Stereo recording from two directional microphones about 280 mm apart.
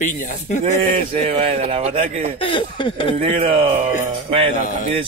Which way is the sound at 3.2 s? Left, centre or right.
Right.